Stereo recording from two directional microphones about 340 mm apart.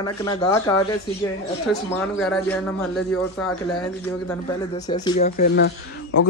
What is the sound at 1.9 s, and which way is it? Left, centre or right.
Speech, centre.